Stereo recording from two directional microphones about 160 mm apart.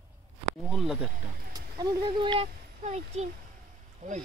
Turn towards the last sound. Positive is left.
turn(degrees=-55)  # may be behind; listen again after turning